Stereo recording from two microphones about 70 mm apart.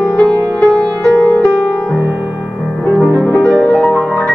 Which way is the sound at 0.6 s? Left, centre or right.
Centre.